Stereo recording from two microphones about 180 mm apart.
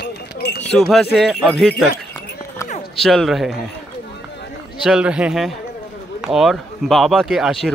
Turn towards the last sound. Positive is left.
turn(degrees=0)  # may be behind; listen again after turning